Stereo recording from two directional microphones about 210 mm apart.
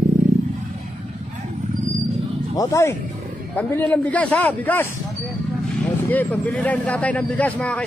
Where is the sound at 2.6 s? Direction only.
15° left (ahead or behind).